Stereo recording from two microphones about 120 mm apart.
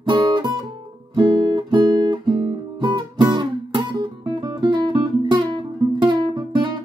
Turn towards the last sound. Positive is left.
turn(degrees=-40)  # may be behind; listen again after turning